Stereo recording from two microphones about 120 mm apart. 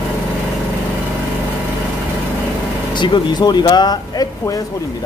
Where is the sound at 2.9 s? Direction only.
40° left (ahead or behind).